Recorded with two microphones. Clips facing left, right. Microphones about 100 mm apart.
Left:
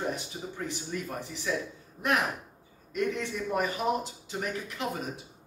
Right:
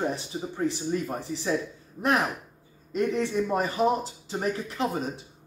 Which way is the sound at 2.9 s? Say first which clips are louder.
Right 5 dB; 30° right (ahead or behind).